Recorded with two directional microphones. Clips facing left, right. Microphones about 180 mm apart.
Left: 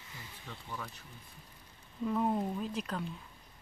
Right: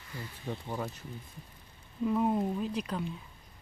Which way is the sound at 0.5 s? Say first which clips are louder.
Right 8 dB; 40° right (ahead or behind).